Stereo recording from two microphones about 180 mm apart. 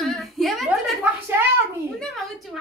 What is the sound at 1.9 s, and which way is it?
Speech, centre (ahead or behind).